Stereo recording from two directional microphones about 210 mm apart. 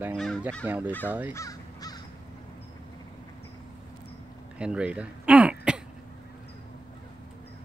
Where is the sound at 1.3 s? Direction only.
15° left (ahead or behind).